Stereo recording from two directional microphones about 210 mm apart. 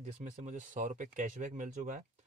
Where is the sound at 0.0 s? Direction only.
35° right (ahead or behind).